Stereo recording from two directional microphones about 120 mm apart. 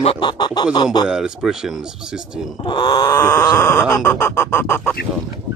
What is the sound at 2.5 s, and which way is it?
Speech, 40° left (ahead or behind).